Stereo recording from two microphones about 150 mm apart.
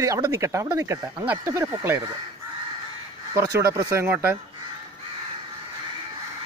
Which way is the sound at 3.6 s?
15° right (ahead or behind).